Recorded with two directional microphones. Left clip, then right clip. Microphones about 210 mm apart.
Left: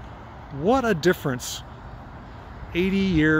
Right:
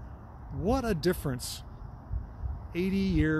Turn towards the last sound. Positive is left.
turn(degrees=5)  # may be behind; listen again after turning